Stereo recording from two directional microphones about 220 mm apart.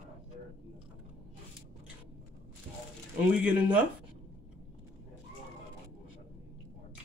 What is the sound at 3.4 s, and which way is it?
Speech, 5° right (ahead or behind).